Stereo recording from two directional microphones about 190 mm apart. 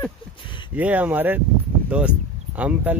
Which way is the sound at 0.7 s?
10° right (ahead or behind).